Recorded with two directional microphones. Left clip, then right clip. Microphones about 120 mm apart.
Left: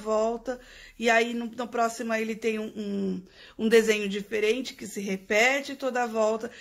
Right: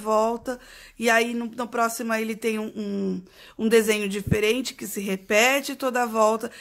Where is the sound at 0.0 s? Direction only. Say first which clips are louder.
Right 4 dB; 30° right (ahead or behind).